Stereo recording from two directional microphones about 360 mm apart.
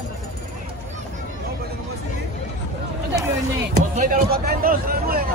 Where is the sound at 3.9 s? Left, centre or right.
Right.